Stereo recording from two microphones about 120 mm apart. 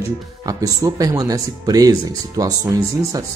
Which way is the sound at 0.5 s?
30° right (ahead or behind).